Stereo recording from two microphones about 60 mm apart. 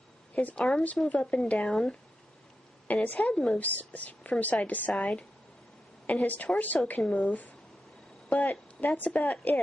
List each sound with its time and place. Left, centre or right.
0.3 s a woman's voice: left
3.2 s a woman's voice: centre
3.5 s a woman's voice: left
4.9 s a woman's voice: centre
6.0 s a woman's voice: left
8.5 s a woman's voice: left